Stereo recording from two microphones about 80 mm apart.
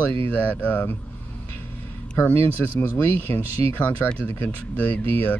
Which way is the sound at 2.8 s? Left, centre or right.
Left.